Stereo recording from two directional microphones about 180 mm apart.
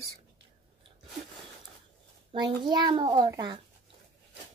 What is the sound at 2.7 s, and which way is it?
Speech, 25° right (ahead or behind).